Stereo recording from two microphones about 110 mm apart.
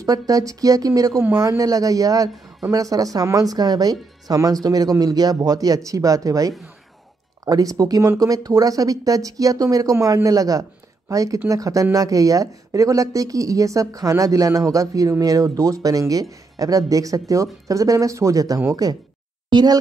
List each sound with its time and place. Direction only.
0.0 s speech: 35° right (ahead or behind)